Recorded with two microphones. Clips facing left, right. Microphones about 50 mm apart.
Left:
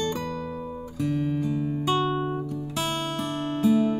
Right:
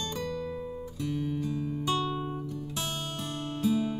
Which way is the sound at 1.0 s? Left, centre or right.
Left.